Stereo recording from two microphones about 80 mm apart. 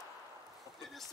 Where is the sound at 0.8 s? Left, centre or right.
Centre.